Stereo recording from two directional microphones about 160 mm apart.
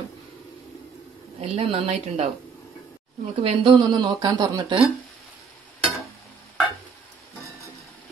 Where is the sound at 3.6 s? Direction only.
25° right (ahead or behind).